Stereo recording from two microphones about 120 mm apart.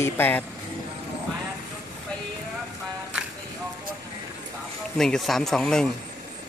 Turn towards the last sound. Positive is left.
turn(degrees=5)  # may be behind; listen again after turning